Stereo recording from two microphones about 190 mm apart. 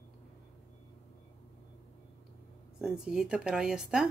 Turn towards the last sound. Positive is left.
turn(degrees=-5)  # may be behind; listen again after turning